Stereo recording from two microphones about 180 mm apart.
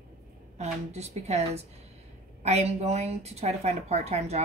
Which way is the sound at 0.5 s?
35° right (ahead or behind).